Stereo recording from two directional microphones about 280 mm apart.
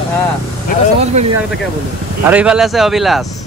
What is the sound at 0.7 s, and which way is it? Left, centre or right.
Speech, left.